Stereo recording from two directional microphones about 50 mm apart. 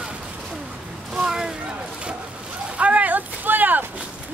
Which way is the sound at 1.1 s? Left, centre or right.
Centre.